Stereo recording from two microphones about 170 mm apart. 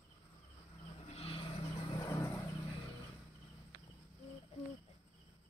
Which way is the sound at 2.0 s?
20° left (ahead or behind).